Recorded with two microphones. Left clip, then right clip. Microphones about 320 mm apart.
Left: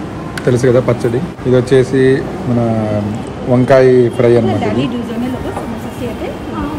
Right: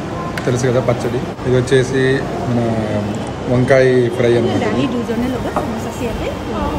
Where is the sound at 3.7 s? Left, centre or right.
Left.